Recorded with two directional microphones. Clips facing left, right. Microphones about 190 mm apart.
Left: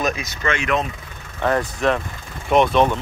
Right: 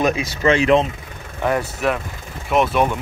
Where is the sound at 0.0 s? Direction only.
30° right (ahead or behind).